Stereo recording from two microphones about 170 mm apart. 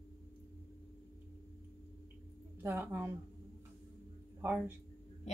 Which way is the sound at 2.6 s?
10° right (ahead or behind).